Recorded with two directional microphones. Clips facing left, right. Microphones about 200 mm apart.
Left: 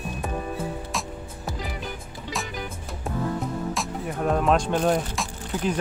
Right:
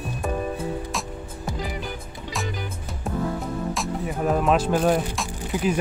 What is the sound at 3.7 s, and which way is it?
Speech, centre (ahead or behind).